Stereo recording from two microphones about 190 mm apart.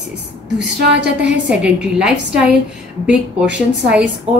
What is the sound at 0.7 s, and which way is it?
Speech, 60° right (ahead or behind).